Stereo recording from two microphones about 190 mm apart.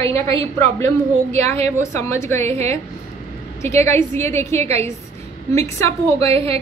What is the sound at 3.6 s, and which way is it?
A woman's voice, 15° left (ahead or behind).